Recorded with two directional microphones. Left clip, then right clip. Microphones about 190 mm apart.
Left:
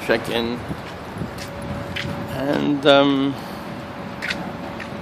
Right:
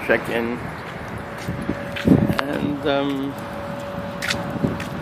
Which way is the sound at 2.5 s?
45° left (ahead or behind).